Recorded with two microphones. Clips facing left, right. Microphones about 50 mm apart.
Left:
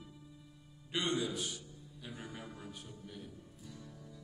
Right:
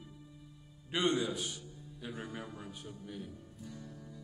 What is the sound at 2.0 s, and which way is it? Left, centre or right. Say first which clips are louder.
Speech: right 5 dB; right.